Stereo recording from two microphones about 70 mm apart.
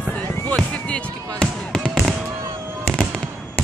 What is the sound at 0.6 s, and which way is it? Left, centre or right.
Basketball bounce, centre.